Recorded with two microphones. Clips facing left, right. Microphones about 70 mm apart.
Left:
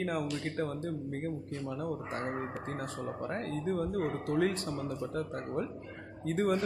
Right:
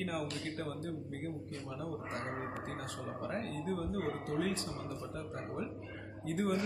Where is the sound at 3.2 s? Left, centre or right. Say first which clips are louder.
Left 3 dB; left.